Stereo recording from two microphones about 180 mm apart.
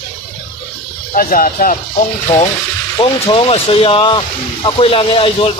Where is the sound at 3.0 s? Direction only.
30° left (ahead or behind).